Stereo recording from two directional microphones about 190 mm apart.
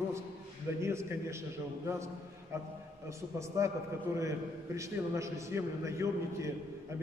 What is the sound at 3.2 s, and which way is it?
A man's voice, 15° right (ahead or behind).